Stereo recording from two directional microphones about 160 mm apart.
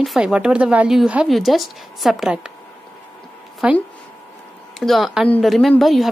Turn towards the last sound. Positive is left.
turn(degrees=0)  # may be behind; listen again after turning